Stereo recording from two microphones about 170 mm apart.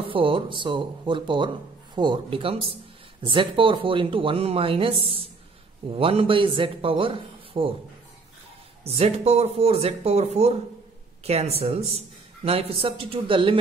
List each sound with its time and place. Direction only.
0.0 s speech: 30° right (ahead or behind)
8.8 s speech: 35° right (ahead or behind)